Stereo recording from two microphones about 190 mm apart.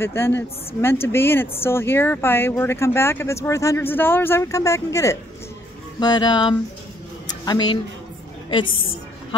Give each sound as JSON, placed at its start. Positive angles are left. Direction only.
{"t": 0.0, "sound": "speech", "side_deg": 10}
{"t": 5.9, "sound": "music", "side_deg": 20}
{"t": 7.2, "sound": "a sound", "side_deg": 20}